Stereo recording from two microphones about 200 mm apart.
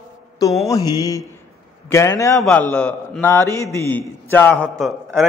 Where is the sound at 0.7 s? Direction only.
15° left (ahead or behind).